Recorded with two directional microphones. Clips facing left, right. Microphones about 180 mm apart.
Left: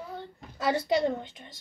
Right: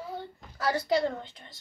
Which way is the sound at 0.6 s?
20° left (ahead or behind).